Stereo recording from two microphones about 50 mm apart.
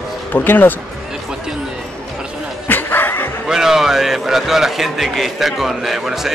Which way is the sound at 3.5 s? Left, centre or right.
Centre.